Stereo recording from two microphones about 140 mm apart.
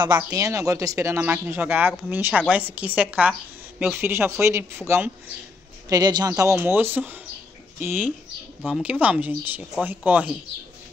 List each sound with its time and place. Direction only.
0.1 s speech: 20° right (ahead or behind)
5.9 s speech: 30° right (ahead or behind)
6.5 s speech: 15° right (ahead or behind)
8.6 s speech: 5° right (ahead or behind)